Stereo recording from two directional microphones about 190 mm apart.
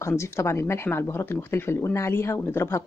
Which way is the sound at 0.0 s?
15° left (ahead or behind).